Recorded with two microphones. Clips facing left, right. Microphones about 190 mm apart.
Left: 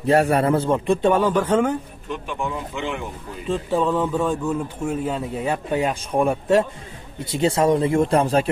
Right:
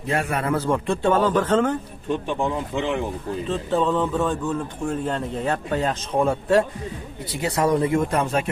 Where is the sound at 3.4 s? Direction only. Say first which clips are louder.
Left 2 dB; 10° left (ahead or behind).